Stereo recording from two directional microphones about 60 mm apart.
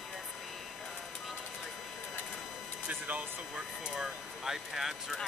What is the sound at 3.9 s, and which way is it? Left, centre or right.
Speech, centre.